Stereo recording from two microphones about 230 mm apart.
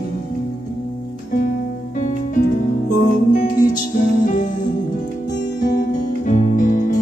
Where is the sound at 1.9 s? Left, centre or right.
Left.